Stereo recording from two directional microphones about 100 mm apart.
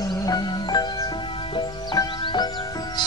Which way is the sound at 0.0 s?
40° left (ahead or behind).